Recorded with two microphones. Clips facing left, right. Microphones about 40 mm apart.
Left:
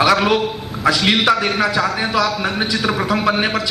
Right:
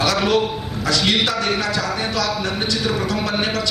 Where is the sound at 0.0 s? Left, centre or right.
Centre.